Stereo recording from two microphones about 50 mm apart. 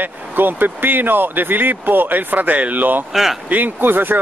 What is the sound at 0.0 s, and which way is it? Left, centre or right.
Speech, right.